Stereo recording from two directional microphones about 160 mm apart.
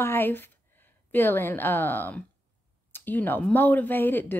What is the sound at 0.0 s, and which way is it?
Speech, 15° left (ahead or behind).